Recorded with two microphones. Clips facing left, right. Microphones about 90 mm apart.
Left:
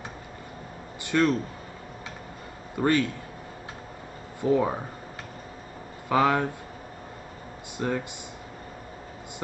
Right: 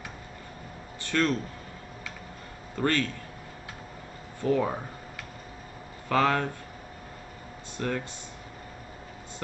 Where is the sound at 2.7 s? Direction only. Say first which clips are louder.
Left 3 dB; 15° left (ahead or behind).